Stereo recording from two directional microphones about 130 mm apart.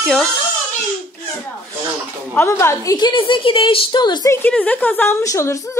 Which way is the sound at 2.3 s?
20° left (ahead or behind).